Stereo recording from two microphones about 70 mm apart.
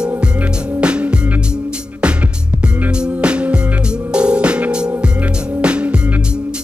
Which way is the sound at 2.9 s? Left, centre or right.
Centre.